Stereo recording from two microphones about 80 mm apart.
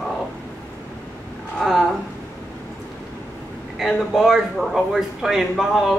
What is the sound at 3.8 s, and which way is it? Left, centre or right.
Speech, centre.